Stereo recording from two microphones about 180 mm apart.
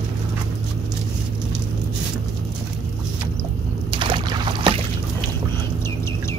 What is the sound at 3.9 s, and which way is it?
Boat, 25° right (ahead or behind).